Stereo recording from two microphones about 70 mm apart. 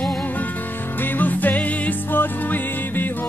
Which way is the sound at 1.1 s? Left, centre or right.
Left.